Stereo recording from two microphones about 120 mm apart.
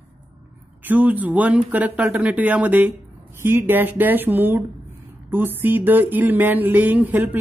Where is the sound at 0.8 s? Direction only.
15° right (ahead or behind).